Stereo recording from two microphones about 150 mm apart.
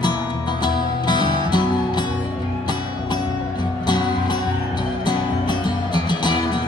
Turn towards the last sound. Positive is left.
turn(degrees=30)  # may be behind; listen again after turning